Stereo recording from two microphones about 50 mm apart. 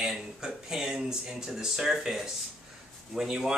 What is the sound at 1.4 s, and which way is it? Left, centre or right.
Speech, centre.